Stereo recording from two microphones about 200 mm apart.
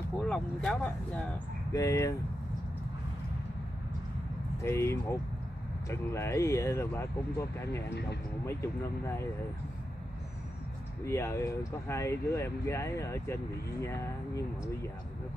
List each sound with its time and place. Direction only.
0.2 s speech: 5° left (ahead or behind)
4.6 s speech: 15° left (ahead or behind)
7.9 s speech: 55° left (ahead or behind)
8.5 s speech: 15° left (ahead or behind)
11.1 s speech: 15° left (ahead or behind)